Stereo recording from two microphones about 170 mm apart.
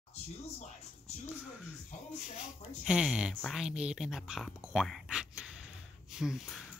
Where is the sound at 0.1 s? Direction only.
45° left (ahead or behind).